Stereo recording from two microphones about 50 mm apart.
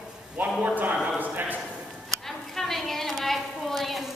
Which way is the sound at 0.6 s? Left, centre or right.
Right.